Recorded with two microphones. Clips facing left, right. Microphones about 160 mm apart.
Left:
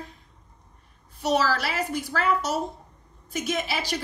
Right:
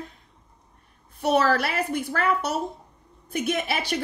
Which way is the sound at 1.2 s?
55° right (ahead or behind).